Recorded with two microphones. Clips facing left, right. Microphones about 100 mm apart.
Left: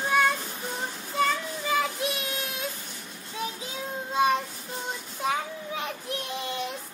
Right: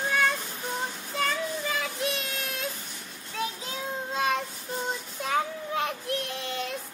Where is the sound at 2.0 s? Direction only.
5° left (ahead or behind).